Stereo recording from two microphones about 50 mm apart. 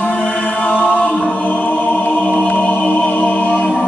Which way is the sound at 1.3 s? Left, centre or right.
Left.